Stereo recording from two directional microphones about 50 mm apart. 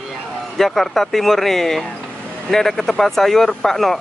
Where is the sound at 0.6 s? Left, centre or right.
Centre.